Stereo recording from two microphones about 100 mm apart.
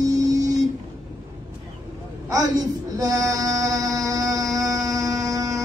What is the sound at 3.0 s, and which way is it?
Mantra, 35° right (ahead or behind).